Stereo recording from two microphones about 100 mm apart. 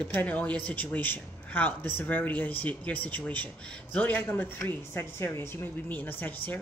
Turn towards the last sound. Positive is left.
turn(degrees=20)  # may be behind; listen again after turning